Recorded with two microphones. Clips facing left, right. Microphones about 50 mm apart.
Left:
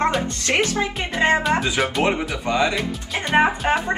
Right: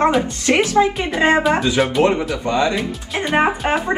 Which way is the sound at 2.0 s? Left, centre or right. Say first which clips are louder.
Right 4 dB; centre.